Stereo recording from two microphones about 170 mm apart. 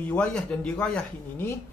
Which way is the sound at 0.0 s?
10° left (ahead or behind).